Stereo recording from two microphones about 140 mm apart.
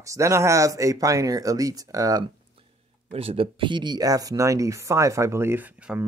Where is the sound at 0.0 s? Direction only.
20° right (ahead or behind).